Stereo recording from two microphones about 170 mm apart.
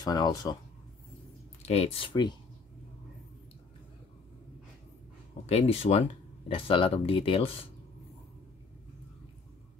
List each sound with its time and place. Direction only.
0.0 s speech: 20° left (ahead or behind)
1.6 s speech: 35° left (ahead or behind)
5.5 s speech: 35° left (ahead or behind)